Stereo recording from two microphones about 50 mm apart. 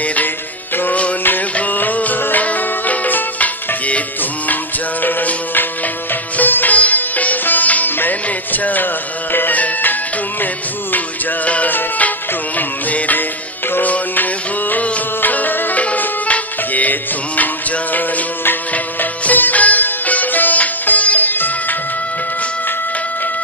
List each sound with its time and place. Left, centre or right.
0.0 s music: left
11.4 s music: left